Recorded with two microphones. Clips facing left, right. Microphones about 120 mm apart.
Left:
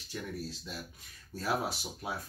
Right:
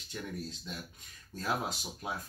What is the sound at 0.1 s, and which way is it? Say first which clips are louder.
Speech: left 1 dB; 20° right (ahead or behind).